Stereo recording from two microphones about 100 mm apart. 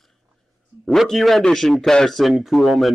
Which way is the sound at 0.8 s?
5° left (ahead or behind).